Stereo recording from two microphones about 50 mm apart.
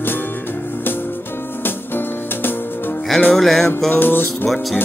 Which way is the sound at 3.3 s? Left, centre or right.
Centre.